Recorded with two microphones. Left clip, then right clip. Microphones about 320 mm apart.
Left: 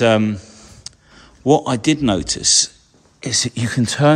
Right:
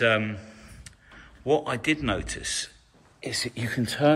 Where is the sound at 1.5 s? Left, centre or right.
Centre.